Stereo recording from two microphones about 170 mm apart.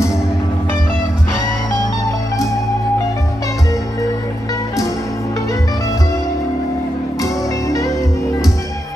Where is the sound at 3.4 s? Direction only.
20° left (ahead or behind).